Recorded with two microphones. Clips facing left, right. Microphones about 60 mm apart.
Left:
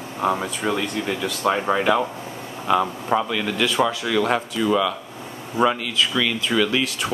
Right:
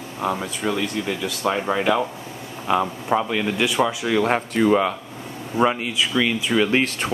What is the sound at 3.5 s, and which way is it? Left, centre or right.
Speech, centre.